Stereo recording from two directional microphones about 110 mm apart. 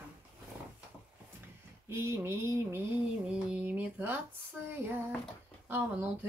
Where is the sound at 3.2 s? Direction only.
10° right (ahead or behind).